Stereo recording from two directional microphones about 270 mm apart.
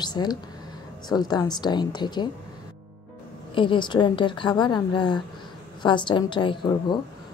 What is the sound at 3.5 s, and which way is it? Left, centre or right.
Speech, centre.